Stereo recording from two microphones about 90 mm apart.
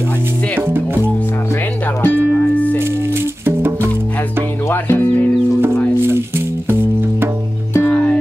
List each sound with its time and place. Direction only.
0.6 s music: 25° right (ahead or behind)
2.0 s music: 20° left (ahead or behind)
3.4 s music: 25° right (ahead or behind)
4.6 s music: 25° left (ahead or behind)
6.0 s music: 25° right (ahead or behind)
7.7 s music: 20° left (ahead or behind)